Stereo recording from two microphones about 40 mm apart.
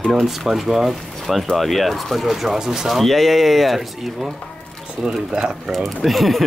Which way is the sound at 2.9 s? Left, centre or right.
Centre.